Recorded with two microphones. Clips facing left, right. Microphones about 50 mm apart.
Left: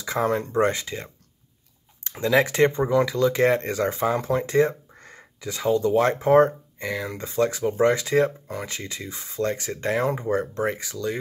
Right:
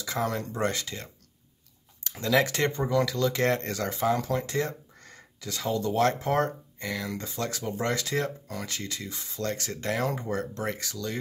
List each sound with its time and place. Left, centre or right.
0.0 s speech: left